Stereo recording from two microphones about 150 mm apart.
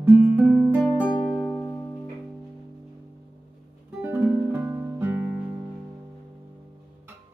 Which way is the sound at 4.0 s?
10° right (ahead or behind).